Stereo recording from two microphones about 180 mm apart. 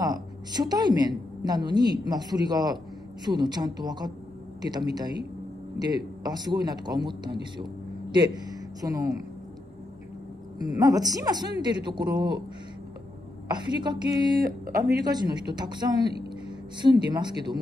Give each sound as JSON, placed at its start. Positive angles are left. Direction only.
{"t": 0.0, "sound": "a woman's voice", "side_deg": -20}
{"t": 10.6, "sound": "a woman's voice", "side_deg": -20}
{"t": 13.5, "sound": "a woman's voice", "side_deg": -25}